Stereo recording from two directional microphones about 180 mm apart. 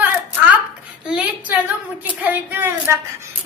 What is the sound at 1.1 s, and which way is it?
A man's voice, 5° right (ahead or behind).